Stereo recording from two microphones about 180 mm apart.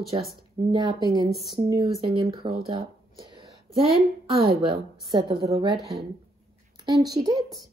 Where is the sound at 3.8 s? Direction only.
60° right (ahead or behind).